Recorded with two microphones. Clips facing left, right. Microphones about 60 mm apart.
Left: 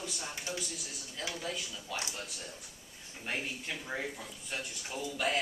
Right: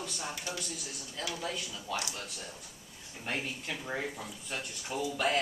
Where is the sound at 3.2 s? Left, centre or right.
Centre.